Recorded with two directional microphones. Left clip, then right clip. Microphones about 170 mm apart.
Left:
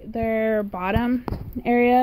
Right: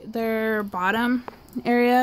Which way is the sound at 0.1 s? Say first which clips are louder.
Left 2 dB; 15° right (ahead or behind).